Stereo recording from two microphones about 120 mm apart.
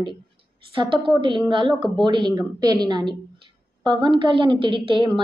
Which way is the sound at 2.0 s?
40° right (ahead or behind).